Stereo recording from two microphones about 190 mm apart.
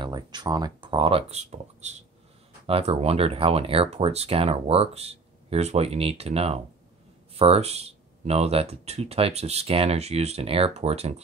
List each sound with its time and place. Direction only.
0.0 s speech: 20° right (ahead or behind)